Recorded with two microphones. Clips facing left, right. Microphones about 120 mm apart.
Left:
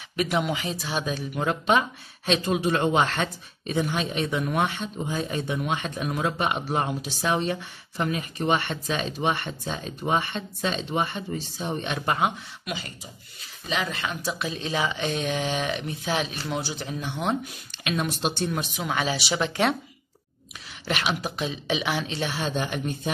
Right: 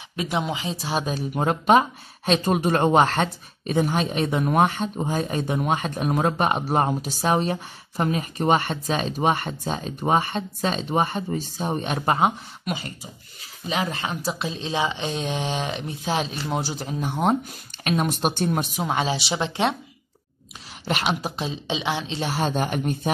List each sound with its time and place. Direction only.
0.1 s speech: 20° right (ahead or behind)
20.8 s speech: 35° right (ahead or behind)